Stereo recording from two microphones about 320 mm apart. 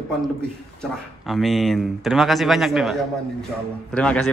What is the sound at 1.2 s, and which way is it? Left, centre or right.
A man's voice, centre.